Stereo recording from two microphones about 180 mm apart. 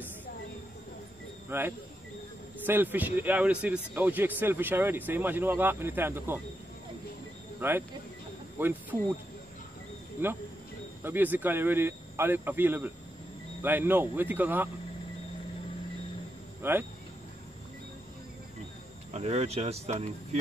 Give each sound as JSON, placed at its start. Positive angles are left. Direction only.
{"t": 1.5, "sound": "a man's voice", "side_deg": -15}
{"t": 7.6, "sound": "a man's voice", "side_deg": -10}
{"t": 10.2, "sound": "a man's voice", "side_deg": -10}
{"t": 16.6, "sound": "a man's voice", "side_deg": -10}
{"t": 19.1, "sound": "speech", "side_deg": -35}